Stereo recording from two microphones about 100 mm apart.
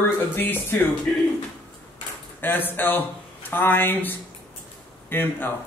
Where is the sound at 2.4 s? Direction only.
20° left (ahead or behind).